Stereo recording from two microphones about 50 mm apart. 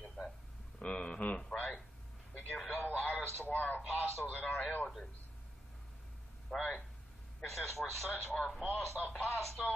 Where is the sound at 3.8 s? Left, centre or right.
Centre.